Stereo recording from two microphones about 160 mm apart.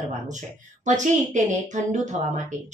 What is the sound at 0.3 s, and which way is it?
A woman's voice, 50° right (ahead or behind).